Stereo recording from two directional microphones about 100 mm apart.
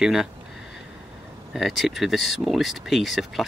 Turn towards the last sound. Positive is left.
turn(degrees=0)  # may be behind; listen again after turning